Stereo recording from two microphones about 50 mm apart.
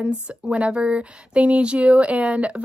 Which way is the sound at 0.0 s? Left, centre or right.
Right.